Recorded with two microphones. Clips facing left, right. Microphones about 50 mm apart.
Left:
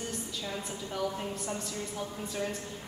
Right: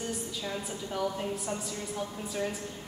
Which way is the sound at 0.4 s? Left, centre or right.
Centre.